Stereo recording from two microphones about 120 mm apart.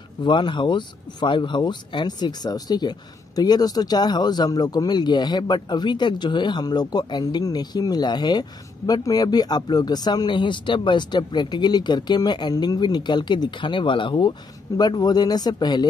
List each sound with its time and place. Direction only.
0.2 s speech: 40° left (ahead or behind)